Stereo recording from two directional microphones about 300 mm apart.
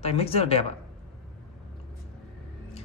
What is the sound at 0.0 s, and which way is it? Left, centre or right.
Speech, centre.